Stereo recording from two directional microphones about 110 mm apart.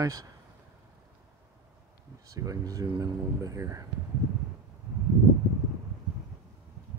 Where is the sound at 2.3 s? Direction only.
30° right (ahead or behind).